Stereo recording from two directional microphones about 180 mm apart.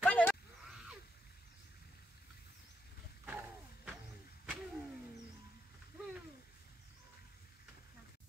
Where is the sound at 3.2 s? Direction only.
10° right (ahead or behind).